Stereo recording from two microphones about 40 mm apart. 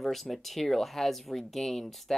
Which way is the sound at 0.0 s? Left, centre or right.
Centre.